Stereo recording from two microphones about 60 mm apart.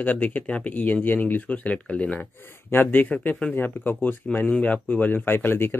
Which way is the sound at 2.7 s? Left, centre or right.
Left.